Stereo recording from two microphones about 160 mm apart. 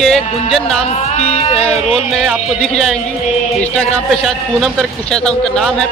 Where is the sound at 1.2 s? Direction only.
40° left (ahead or behind).